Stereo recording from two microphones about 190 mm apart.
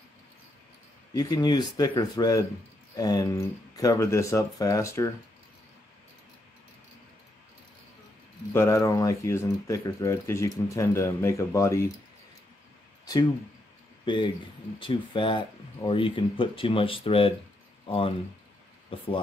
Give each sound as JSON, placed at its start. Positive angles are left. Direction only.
{"t": 1.1, "sound": "speech", "side_deg": 20}
{"t": 8.5, "sound": "speech", "side_deg": 15}
{"t": 14.0, "sound": "speech", "side_deg": 25}